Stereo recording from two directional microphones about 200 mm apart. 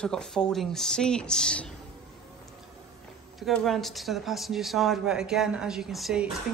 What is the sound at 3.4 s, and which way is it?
Speech, centre (ahead or behind).